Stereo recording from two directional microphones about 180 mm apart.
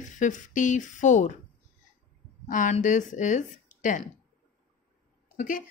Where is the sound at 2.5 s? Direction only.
45° left (ahead or behind).